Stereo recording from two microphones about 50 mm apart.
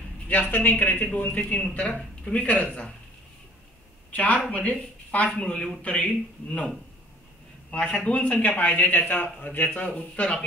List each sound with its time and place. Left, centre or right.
0.3 s a woman's voice: left
1.4 s speech: centre
1.7 s a woman's voice: left
4.1 s speech: left
7.7 s speech: left